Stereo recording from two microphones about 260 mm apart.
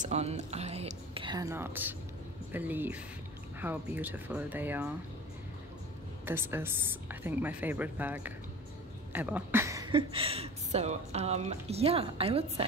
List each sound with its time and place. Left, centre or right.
0.0 s a woman's voice: right; by 4.9 s centre
6.2 s a woman's voice: centre